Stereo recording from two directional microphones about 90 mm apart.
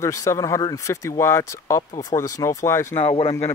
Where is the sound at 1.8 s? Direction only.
55° left (ahead or behind).